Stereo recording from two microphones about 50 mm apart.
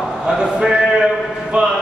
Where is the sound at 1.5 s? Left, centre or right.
Right.